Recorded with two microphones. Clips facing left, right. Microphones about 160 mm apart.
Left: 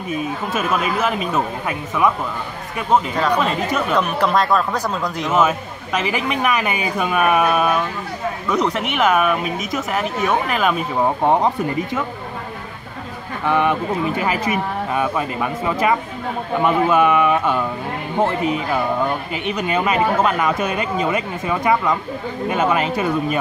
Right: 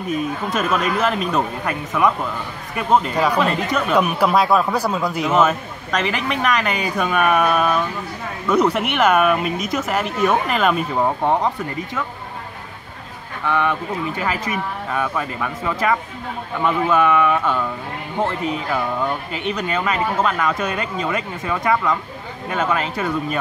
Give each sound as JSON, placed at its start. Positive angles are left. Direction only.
{"t": 0.1, "sound": "speech", "side_deg": 5}
{"t": 3.9, "sound": "speech", "side_deg": -10}
{"t": 5.3, "sound": "speech", "side_deg": 5}
{"t": 8.5, "sound": "speech", "side_deg": 0}
{"t": 11.2, "sound": "speech", "side_deg": 15}
{"t": 13.5, "sound": "speech", "side_deg": 15}